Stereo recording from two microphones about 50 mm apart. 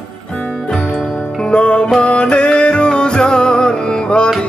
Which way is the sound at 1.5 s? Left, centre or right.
Left.